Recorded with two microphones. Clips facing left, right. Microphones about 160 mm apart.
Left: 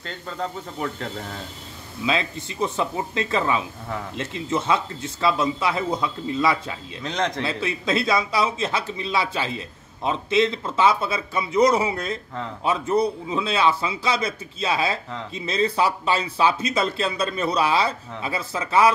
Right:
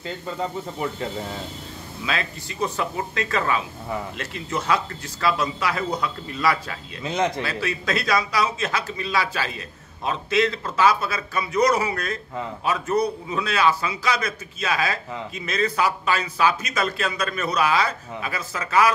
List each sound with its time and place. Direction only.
0.0 s speech: 5° right (ahead or behind)
2.0 s a man's voice: 20° left (ahead or behind)
7.0 s speech: 5° right (ahead or behind)
7.4 s a man's voice: 25° left (ahead or behind)